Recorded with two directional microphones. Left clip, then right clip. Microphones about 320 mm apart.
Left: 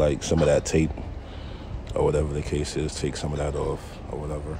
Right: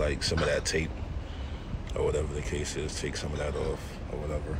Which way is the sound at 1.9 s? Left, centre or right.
Left.